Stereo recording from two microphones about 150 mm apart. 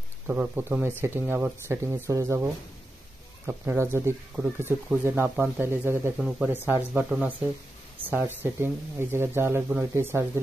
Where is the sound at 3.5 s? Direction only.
15° right (ahead or behind).